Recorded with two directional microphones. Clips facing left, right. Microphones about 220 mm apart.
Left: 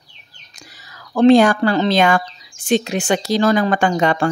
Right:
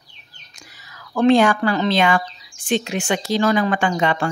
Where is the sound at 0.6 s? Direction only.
35° left (ahead or behind).